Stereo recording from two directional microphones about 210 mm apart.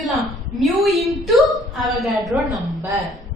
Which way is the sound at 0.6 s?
Centre (ahead or behind).